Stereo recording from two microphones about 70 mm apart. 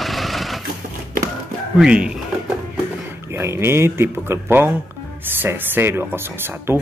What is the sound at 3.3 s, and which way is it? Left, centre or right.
Speech, right.